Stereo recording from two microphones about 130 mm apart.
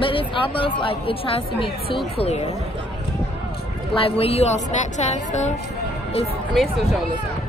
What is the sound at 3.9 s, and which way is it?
A woman's voice, 45° left (ahead or behind).